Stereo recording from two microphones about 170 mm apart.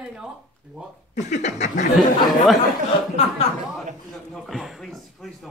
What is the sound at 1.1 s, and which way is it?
Speech, 45° left (ahead or behind).